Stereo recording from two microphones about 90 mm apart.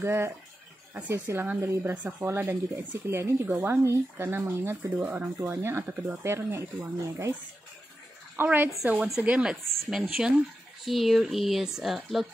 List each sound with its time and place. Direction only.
0.0 s speech: 30° right (ahead or behind)
3.5 s speech: 20° right (ahead or behind)
3.8 s speech: 30° right (ahead or behind)
8.4 s speech: 20° right (ahead or behind); by 12.3 s centre (ahead or behind)